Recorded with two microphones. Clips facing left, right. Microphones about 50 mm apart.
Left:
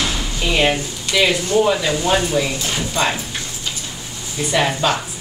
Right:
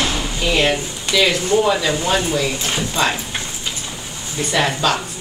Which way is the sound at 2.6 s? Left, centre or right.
Centre.